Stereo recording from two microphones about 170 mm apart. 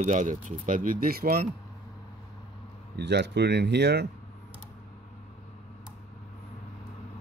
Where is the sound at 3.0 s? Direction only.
80° right.